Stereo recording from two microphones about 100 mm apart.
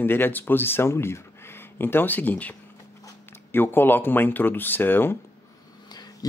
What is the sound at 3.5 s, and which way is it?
Speech, 20° left (ahead or behind).